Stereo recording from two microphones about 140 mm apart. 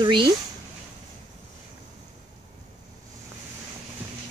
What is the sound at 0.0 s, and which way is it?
Speech, 35° right (ahead or behind).